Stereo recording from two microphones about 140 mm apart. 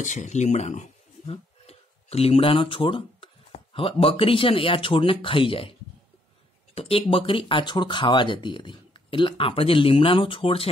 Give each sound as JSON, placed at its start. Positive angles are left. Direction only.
{"t": 0.0, "sound": "speech", "side_deg": 60}
{"t": 1.2, "sound": "a sound", "side_deg": 45}
{"t": 3.7, "sound": "speech", "side_deg": 40}